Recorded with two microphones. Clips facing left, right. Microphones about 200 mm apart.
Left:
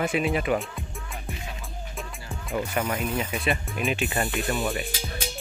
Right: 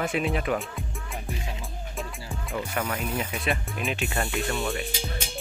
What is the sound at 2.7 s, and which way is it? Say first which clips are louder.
Speech: left 1 dB; 10° left (ahead or behind).